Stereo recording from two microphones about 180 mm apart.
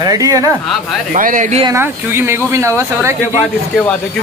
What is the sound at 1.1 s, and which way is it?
Speech, 45° right (ahead or behind).